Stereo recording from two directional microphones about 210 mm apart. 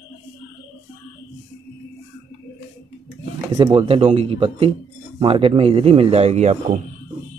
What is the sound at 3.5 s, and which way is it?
Speech, 20° right (ahead or behind).